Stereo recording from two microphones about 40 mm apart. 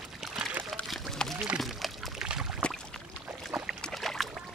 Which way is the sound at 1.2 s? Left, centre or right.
Centre.